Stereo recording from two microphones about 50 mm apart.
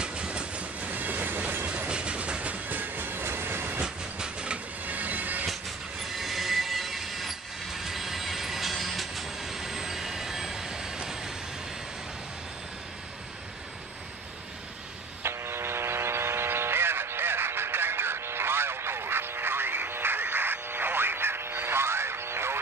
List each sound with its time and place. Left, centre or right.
0.0 s train: right
1.9 s train: right
3.8 s train: centre
4.8 s train: right
6.0 s train: centre
15.2 s vehicle: right